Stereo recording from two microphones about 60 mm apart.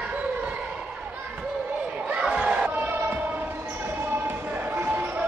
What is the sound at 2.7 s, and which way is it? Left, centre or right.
Crowd, right.